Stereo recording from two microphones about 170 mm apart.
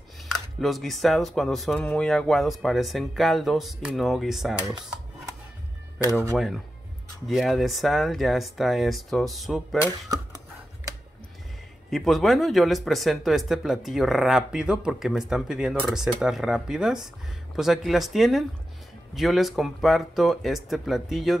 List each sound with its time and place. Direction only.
0.6 s speech: centre (ahead or behind)
6.0 s speech: 20° right (ahead or behind)
6.3 s speech: centre (ahead or behind)
11.9 s speech: centre (ahead or behind)